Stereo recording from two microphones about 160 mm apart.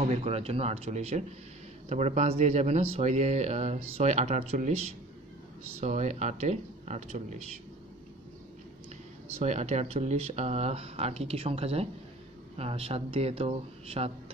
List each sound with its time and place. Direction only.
0.0 s speech: 40° right (ahead or behind)
9.4 s speech: 45° right (ahead or behind)